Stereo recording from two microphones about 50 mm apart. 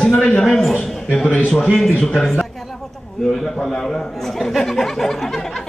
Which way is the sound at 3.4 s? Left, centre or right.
Centre.